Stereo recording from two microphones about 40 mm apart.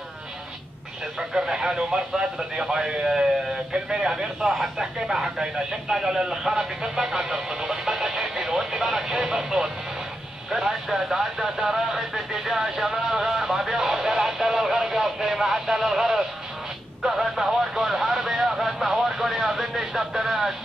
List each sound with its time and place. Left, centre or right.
1.3 s a man's voice: centre
10.5 s radio: centre
13.9 s a sound: centre
17.0 s radio: centre